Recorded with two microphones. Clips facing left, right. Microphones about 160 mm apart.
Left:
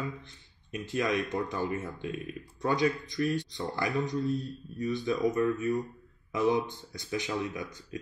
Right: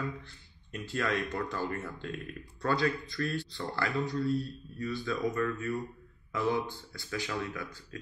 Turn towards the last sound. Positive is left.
turn(degrees=20)  # may be behind; listen again after turning